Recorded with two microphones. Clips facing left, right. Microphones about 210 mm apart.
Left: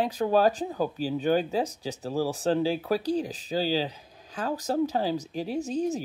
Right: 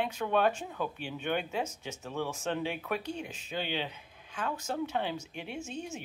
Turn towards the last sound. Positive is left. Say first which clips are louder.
# left 11 dB
turn(degrees=35)  # may be behind; listen again after turning